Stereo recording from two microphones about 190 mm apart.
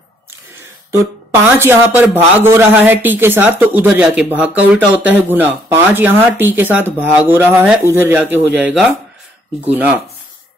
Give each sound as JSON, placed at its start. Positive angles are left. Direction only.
{"t": 1.6, "sound": "speech", "side_deg": -10}